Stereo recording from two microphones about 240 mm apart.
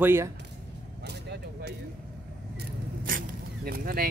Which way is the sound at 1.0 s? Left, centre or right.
Right.